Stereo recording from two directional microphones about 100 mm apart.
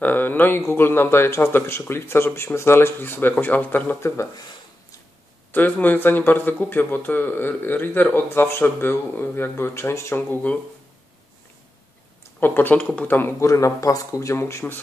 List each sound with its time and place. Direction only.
0.0 s speech: 20° left (ahead or behind)
5.5 s speech: 15° left (ahead or behind)
12.4 s speech: 20° left (ahead or behind)
13.5 s speech: 35° left (ahead or behind)